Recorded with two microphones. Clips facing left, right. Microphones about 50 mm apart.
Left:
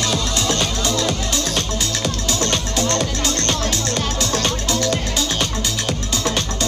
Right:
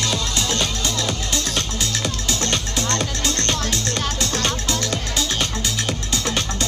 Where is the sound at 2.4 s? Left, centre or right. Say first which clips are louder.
Left 4 dB; centre.